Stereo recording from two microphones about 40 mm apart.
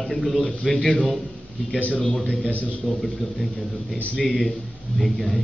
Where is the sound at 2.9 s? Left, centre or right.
Centre.